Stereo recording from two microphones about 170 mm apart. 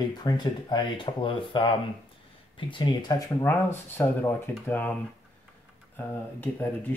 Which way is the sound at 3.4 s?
10° left (ahead or behind).